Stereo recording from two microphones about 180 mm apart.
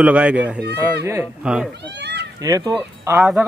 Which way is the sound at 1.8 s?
70° right (ahead or behind).